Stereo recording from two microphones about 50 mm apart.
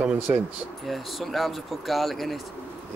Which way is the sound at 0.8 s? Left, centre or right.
Centre.